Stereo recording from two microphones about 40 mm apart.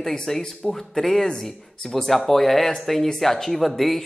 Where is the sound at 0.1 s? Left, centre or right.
Centre.